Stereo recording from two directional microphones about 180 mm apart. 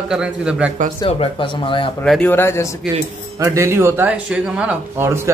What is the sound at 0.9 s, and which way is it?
Speech, 30° left (ahead or behind).